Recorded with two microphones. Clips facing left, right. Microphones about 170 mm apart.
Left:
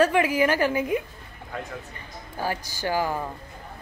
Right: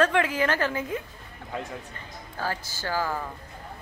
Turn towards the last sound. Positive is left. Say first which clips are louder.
# left 3 dB
turn(degrees=15)  # may be behind; listen again after turning